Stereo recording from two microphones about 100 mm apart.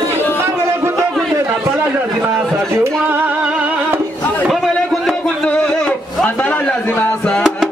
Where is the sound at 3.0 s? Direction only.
20° right (ahead or behind).